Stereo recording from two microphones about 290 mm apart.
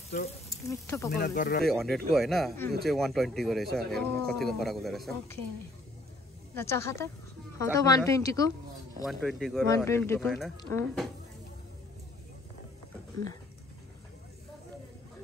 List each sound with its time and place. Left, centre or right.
0.5 s speech: centre
1.1 s speech: left
1.7 s speech: centre
6.5 s speech: centre
9.0 s speech: centre